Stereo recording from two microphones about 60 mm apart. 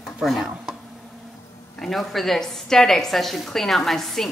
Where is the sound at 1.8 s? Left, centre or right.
Centre.